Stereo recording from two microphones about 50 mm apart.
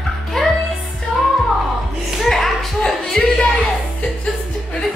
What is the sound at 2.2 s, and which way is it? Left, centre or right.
Music, centre.